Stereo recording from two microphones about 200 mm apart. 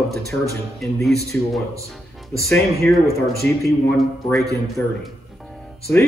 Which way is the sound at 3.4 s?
50° right (ahead or behind).